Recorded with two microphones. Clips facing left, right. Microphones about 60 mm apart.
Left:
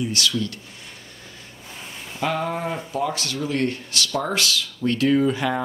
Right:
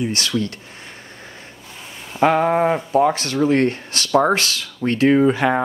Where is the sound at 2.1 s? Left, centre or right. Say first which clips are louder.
Right 9 dB; right.